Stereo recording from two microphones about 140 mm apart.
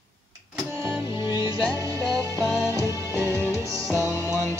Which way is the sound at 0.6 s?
15° right (ahead or behind).